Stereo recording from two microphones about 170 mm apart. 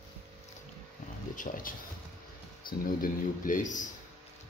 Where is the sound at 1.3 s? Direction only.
55° left (ahead or behind).